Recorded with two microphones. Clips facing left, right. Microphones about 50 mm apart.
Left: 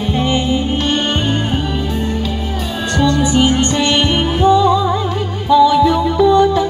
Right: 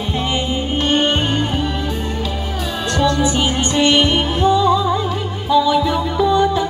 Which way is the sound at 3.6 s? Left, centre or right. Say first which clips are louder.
Even; centre.